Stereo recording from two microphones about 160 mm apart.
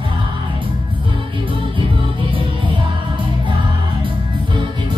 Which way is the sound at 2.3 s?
30° right (ahead or behind).